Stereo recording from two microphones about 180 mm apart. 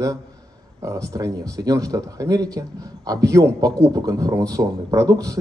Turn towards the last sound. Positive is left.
turn(degrees=-20)  # may be behind; listen again after turning